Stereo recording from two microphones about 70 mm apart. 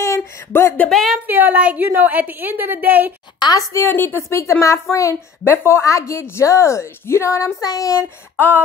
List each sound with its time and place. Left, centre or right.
0.5 s speech: left
0.8 s a woman's voice: centre
1.2 s a woman's voice: right
3.4 s a woman's voice: left
3.8 s speech: left
4.3 s a woman's voice: left
7.6 s speech: left
8.4 s a sound: left